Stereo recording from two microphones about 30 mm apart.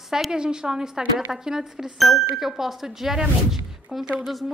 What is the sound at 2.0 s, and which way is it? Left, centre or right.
A woman's voice, centre.